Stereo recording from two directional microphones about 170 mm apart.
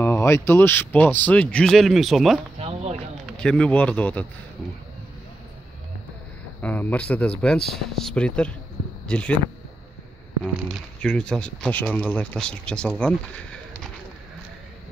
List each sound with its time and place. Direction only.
0.0 s speech: 15° left (ahead or behind); by 2.4 s centre (ahead or behind)
2.6 s a sound: 40° right (ahead or behind)
3.3 s speech: 5° left (ahead or behind)
6.6 s speech: 10° left (ahead or behind)
11.0 s speech: 5° left (ahead or behind)